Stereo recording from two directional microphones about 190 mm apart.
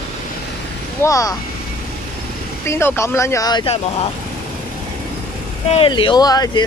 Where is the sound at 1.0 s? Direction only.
15° left (ahead or behind).